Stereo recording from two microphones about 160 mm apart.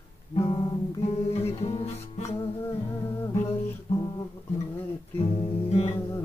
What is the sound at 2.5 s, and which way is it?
Music, 15° left (ahead or behind).